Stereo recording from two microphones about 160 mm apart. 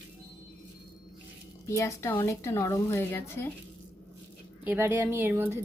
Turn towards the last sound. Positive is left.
turn(degrees=-15)  # may be behind; listen again after turning